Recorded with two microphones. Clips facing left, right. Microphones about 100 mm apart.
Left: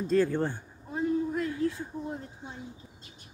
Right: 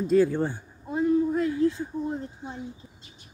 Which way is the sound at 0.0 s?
10° right (ahead or behind).